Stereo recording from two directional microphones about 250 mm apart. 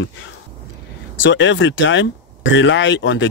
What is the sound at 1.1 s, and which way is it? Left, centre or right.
Speech, left.